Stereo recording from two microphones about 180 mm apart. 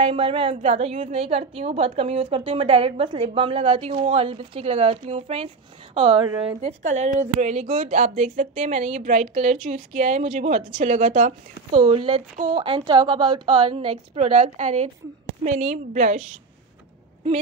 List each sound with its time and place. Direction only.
0.0 s a woman's voice: 30° right (ahead or behind)
6.8 s a woman's voice: 40° right (ahead or behind)